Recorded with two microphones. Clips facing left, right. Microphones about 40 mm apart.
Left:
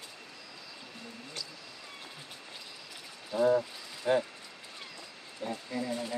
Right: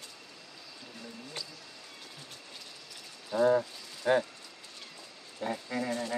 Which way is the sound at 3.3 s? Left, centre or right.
Centre.